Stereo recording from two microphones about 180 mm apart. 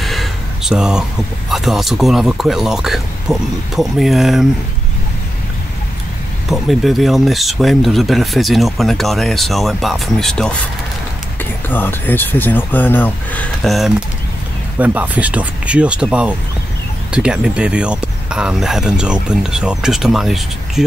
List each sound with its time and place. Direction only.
0.0 s a sound: centre (ahead or behind)
1.5 s speech: centre (ahead or behind)
6.5 s speech: centre (ahead or behind)